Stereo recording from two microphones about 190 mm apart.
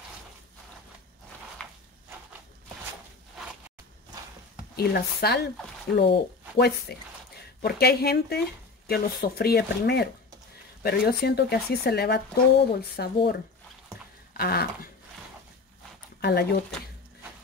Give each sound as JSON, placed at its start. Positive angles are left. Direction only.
{"t": 4.7, "sound": "speech", "side_deg": 55}
{"t": 6.6, "sound": "speech", "side_deg": 55}
{"t": 14.3, "sound": "a sound", "side_deg": 55}
{"t": 16.2, "sound": "speech", "side_deg": 55}